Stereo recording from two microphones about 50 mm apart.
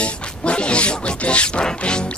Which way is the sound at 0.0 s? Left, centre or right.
Left.